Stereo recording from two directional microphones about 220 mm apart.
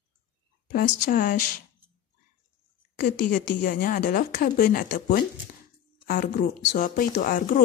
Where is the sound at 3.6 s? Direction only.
35° left (ahead or behind).